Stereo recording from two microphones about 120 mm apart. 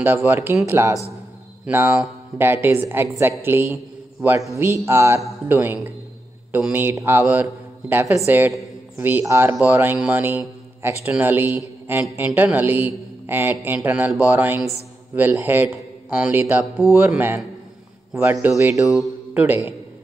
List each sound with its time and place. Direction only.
0.0 s a man's voice: 15° right (ahead or behind)
18.6 s a woman's voice: 25° right (ahead or behind)